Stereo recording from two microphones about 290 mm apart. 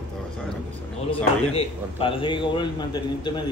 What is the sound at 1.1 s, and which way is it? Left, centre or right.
A man's voice, centre.